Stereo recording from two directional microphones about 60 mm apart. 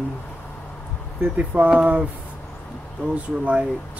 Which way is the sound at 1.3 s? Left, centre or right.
Right.